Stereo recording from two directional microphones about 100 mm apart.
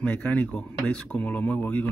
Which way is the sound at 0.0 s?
15° left (ahead or behind).